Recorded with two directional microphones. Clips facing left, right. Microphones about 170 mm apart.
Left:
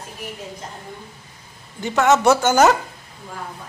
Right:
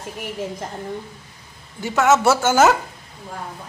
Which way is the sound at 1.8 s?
5° right (ahead or behind).